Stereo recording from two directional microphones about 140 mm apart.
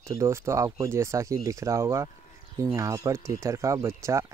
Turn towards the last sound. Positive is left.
turn(degrees=-20)  # may be behind; listen again after turning